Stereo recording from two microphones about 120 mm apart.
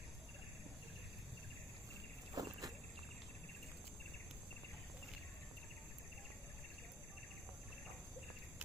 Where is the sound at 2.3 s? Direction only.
30° right (ahead or behind).